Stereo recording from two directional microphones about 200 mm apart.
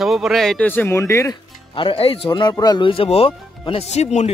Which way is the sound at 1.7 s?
25° left (ahead or behind).